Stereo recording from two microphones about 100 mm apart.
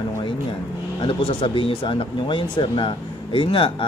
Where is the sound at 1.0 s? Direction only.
60° left (ahead or behind).